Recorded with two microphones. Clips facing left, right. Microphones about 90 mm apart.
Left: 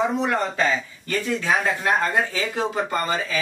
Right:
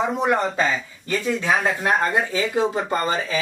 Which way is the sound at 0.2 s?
20° right (ahead or behind).